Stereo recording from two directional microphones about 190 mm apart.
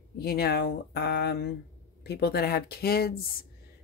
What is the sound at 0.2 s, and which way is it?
A woman's voice, 55° left (ahead or behind).